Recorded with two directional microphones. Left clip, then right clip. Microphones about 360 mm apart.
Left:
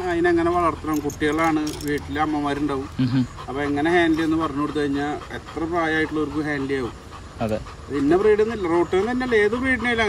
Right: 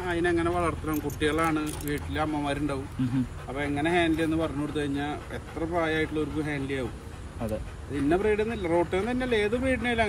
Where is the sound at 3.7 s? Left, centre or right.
Centre.